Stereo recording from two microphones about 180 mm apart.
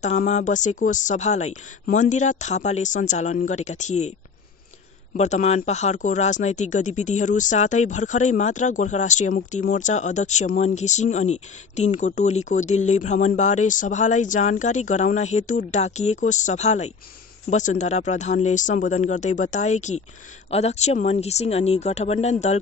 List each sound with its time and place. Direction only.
0.0 s speech: 40° left (ahead or behind)
5.1 s speech: 40° left (ahead or behind)